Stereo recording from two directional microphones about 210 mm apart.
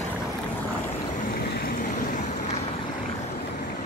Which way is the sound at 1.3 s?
45° left (ahead or behind).